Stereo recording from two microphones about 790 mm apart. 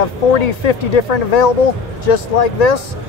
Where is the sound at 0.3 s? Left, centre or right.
Left.